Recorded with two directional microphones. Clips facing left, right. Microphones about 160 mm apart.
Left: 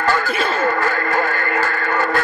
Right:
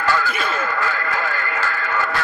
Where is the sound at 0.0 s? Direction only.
50° left (ahead or behind).